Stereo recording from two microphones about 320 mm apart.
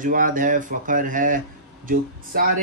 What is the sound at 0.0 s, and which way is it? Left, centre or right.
Speech, right.